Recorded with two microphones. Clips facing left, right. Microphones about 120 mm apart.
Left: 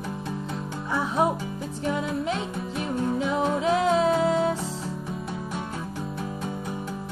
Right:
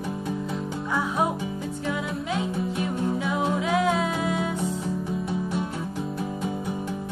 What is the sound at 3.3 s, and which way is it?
Music, 30° left (ahead or behind).